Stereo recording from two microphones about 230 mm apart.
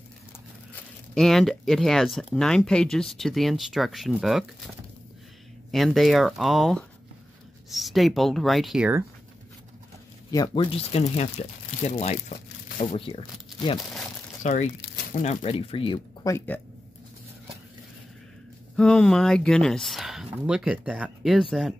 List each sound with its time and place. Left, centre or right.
1.1 s speech: centre
5.7 s speech: centre
10.3 s speech: centre
14.4 s speech: left
16.3 s speech: centre
18.8 s speech: centre